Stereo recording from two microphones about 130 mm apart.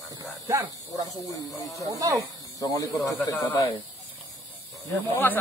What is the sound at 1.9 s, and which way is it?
Speech, 30° right (ahead or behind).